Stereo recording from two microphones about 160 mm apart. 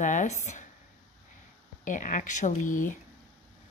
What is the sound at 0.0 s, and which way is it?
Speech, 50° left (ahead or behind).